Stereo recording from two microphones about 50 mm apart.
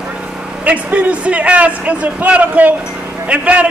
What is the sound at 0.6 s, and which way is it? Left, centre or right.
A man's voice, right.